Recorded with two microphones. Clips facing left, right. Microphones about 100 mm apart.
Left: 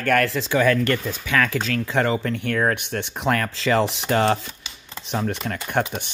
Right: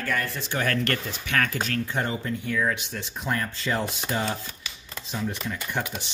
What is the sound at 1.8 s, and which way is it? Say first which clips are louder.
Speech: left 7 dB; 90° left.